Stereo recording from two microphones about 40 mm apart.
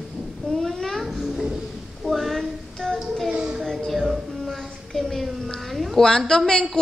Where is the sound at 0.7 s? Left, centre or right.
Centre.